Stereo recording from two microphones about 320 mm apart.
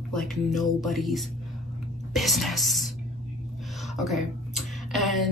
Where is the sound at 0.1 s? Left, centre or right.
Centre.